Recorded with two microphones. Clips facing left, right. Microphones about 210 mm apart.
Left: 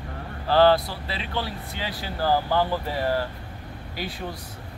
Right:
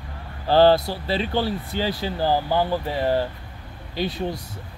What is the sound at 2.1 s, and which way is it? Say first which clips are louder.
Speech: even; 20° right (ahead or behind).